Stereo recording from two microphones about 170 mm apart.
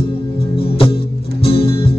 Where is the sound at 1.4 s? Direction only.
35° left (ahead or behind).